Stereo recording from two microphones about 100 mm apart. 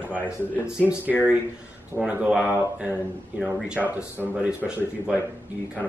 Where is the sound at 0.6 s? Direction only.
15° right (ahead or behind).